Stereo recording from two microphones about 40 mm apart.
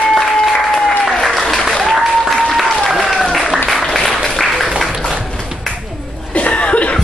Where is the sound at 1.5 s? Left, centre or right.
Centre.